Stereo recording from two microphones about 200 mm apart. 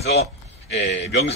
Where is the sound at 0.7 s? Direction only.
60° left (ahead or behind).